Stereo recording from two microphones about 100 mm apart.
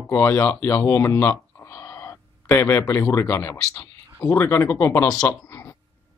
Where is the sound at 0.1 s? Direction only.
25° left (ahead or behind).